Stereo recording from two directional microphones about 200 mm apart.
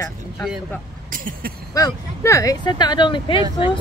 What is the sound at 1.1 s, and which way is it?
Speech, 45° right (ahead or behind).